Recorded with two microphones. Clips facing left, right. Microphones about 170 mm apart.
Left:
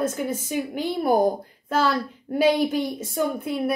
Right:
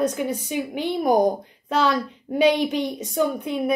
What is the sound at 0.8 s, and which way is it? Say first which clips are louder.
Speech: right 1 dB; 20° right (ahead or behind).